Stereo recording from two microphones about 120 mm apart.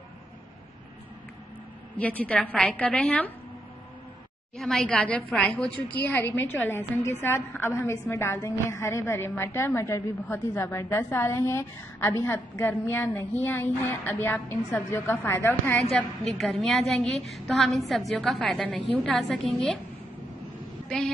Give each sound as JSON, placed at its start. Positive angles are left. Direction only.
{"t": 2.0, "sound": "a woman's voice", "side_deg": 10}
{"t": 4.6, "sound": "a woman's voice", "side_deg": 5}
{"t": 15.9, "sound": "a woman's voice", "side_deg": 0}